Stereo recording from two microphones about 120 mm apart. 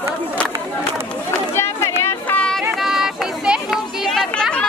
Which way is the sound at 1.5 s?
20° left (ahead or behind).